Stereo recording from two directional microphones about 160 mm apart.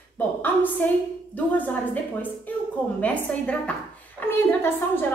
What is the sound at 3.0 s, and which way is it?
A woman's voice, 10° left (ahead or behind).